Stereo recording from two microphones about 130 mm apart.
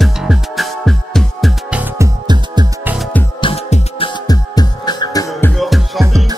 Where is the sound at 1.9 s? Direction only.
25° right (ahead or behind).